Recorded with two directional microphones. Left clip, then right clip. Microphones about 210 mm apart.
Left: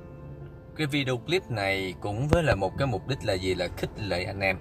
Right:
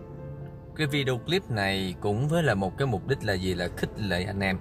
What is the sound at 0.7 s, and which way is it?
Speech, centre (ahead or behind).